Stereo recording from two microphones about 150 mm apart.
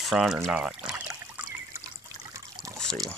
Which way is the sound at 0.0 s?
Centre (ahead or behind).